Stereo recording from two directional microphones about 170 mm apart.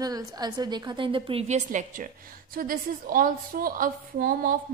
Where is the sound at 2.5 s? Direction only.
55° right (ahead or behind).